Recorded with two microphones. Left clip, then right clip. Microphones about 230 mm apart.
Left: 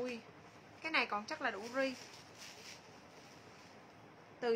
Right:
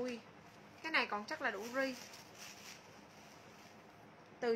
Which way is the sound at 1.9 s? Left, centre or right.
Right.